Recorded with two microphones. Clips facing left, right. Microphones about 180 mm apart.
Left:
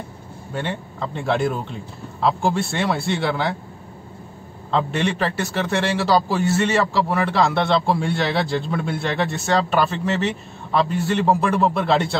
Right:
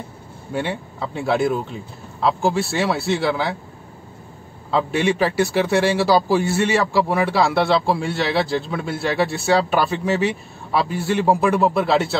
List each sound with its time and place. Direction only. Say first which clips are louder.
0.5 s speech: right 3 dB; 10° right (ahead or behind)
4.6 s a man's voice: right 2 dB; 5° right (ahead or behind)